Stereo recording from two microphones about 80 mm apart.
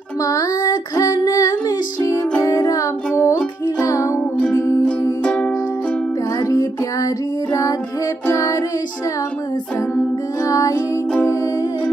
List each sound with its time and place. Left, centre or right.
0.2 s music: left
5.2 s music: centre
6.4 s music: left
8.3 s child singing: left
10.4 s music: left